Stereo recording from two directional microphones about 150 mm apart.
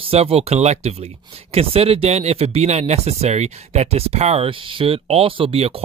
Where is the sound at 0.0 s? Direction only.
40° right (ahead or behind).